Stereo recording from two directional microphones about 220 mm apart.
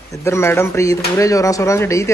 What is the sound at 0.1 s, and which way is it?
A man's voice, 10° left (ahead or behind).